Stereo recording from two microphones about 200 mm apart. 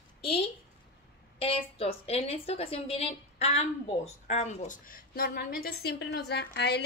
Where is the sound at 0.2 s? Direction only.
30° left (ahead or behind).